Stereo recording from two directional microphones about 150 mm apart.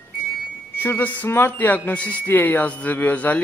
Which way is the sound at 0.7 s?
15° left (ahead or behind).